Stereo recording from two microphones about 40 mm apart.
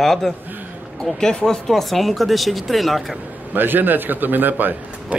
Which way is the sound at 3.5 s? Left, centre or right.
Right.